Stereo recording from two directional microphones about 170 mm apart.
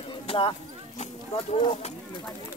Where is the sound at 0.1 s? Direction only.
30° left (ahead or behind).